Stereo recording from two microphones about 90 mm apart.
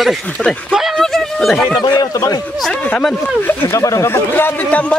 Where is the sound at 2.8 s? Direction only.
15° left (ahead or behind); by 4.1 s 35° left (ahead or behind).